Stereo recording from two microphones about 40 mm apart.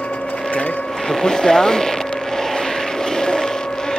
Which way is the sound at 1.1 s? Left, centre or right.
Centre.